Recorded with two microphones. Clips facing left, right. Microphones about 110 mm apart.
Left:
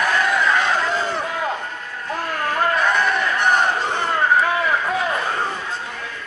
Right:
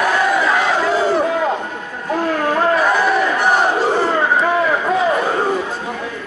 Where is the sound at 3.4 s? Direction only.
10° right (ahead or behind).